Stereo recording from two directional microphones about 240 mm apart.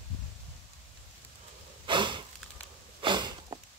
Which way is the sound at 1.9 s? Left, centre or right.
Centre.